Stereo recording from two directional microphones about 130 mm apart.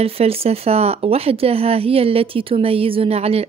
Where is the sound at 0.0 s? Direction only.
50° right (ahead or behind).